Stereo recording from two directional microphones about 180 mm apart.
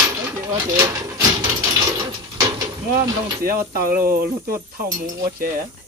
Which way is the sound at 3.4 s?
55° right (ahead or behind).